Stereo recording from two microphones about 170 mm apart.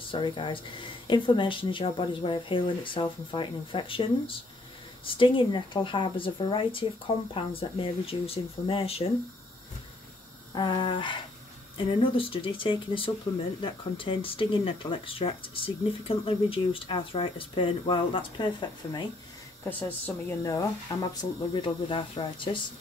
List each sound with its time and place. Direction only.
0.1 s speech: 30° left (ahead or behind)
10.5 s speech: 25° left (ahead or behind)
19.6 s speech: 15° left (ahead or behind); by 22.6 s 30° left (ahead or behind)